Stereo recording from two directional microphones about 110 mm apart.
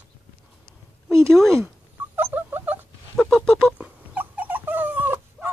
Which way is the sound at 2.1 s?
20° right (ahead or behind).